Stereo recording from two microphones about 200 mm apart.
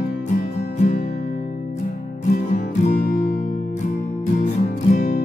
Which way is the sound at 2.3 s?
40° left (ahead or behind).